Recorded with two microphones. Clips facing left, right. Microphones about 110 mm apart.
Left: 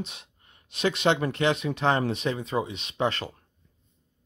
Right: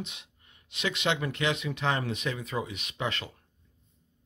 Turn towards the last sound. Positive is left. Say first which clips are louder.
# left 6 dB
turn(degrees=35)  # may be behind; listen again after turning